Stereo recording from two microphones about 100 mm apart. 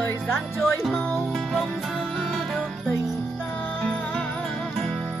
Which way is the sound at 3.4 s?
15° left (ahead or behind).